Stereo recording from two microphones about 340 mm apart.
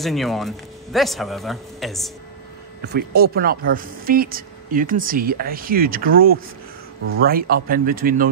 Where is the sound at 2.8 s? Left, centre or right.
Right.